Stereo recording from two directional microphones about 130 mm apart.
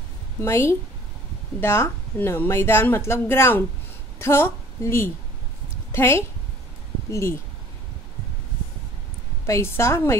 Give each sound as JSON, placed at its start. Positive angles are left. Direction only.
{"t": 0.4, "sound": "a woman's voice", "side_deg": 20}
{"t": 9.5, "sound": "a woman's voice", "side_deg": 20}